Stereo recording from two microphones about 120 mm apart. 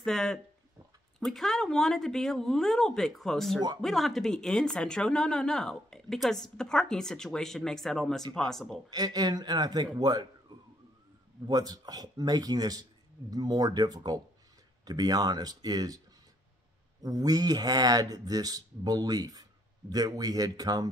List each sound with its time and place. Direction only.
0.0 s speech: 5° left (ahead or behind)
8.9 s speech: 35° right (ahead or behind)
10.5 s a sound: 35° right (ahead or behind)
11.4 s speech: 35° right (ahead or behind)
17.0 s speech: 30° right (ahead or behind)